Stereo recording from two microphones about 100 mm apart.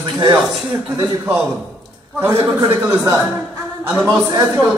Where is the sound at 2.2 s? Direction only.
20° right (ahead or behind).